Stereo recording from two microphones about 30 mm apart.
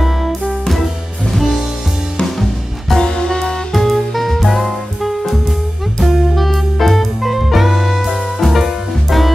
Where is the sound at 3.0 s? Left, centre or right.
Left.